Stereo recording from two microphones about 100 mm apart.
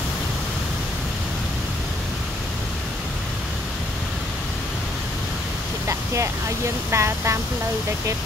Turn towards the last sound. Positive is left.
turn(degrees=-30)  # may be behind; listen again after turning